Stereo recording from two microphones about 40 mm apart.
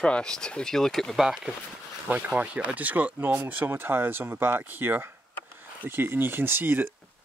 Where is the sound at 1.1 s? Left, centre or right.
Centre.